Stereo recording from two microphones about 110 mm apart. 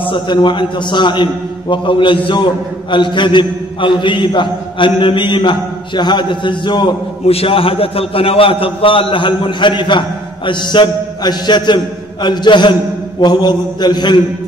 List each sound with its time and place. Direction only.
0.0 s a man's voice: 45° left (ahead or behind)
7.2 s a man's voice: 60° left (ahead or behind); by 14.2 s 40° left (ahead or behind)